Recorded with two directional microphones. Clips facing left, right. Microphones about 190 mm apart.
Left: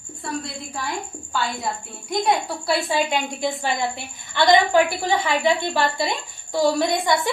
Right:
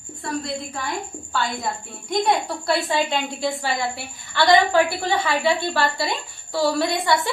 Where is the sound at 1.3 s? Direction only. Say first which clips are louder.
Even; 5° left (ahead or behind).